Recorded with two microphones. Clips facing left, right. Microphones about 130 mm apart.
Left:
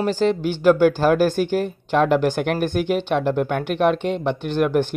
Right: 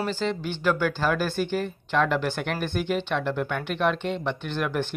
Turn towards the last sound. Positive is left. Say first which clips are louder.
# left 8 dB
turn(degrees=40)  # may be behind; listen again after turning